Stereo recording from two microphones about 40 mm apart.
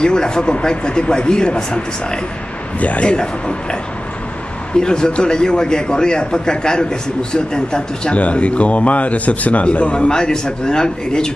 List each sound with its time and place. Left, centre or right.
0.0 s speech: left
2.8 s a man's voice: left
3.1 s speech: left
4.7 s speech: left
8.2 s a man's voice: left
10.0 s speech: centre